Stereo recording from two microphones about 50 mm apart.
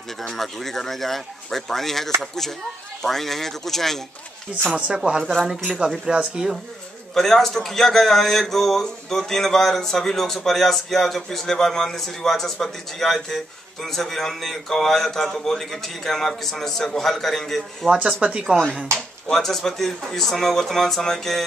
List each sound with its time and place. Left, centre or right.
0.2 s speech: centre
4.5 s speech: right
5.2 s speech: centre
6.0 s a woman's voice: centre
7.2 s a man's voice: centre
17.8 s speech: right
19.2 s a man's voice: centre